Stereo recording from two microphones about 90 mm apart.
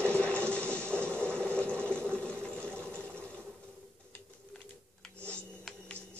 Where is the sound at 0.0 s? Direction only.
10° left (ahead or behind).